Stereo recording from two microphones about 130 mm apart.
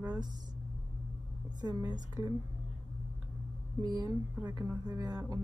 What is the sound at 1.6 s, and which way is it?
Speech, 30° right (ahead or behind).